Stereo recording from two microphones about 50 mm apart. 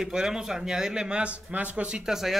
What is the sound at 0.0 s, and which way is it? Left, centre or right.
Speech, centre.